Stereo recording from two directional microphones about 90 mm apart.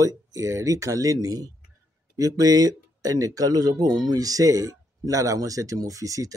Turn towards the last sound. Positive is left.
turn(degrees=-40)  # may be behind; listen again after turning